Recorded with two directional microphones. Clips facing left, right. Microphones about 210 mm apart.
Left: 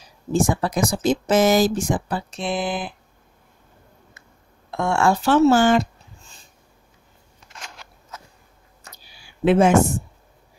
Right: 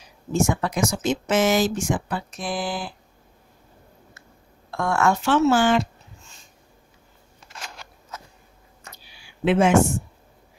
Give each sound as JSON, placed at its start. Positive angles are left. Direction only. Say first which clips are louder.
{"t": 0.3, "sound": "speech", "louder": "left 2 dB", "side_deg": 35}
{"t": 2.4, "sound": "speech", "louder": "left 4 dB", "side_deg": 20}
{"t": 4.6, "sound": "speech", "louder": "left 2 dB", "side_deg": 25}
{"t": 9.0, "sound": "a sound", "louder": "left 3 dB", "side_deg": 40}